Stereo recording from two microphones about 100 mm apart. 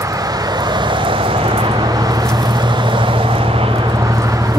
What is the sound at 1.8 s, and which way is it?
Vehicle, 40° right (ahead or behind).